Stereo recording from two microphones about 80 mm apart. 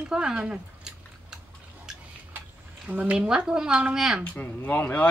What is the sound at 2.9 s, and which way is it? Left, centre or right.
Speech, centre.